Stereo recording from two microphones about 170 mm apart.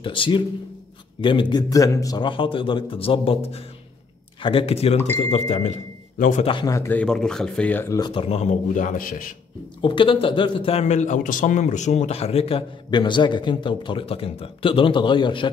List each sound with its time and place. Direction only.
0.0 s a man's voice: 30° left (ahead or behind); by 6.4 s 50° left (ahead or behind)
6.4 s speech: 25° left (ahead or behind)
8.1 s a man's voice: 35° left (ahead or behind); by 9.3 s 55° left (ahead or behind)
9.8 s speech: 30° left (ahead or behind)